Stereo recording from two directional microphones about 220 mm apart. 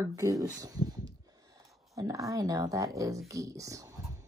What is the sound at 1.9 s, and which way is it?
Speech, 15° right (ahead or behind).